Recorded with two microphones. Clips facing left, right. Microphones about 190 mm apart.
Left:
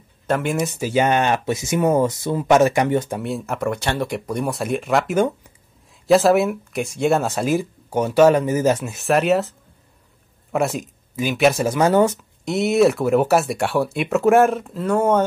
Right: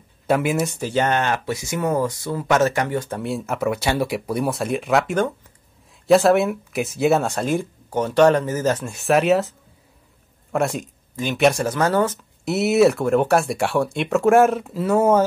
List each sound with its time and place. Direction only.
0.3 s speech: 5° right (ahead or behind); by 3.2 s 15° left (ahead or behind)
3.2 s speech: centre (ahead or behind)
12.4 s speech: centre (ahead or behind)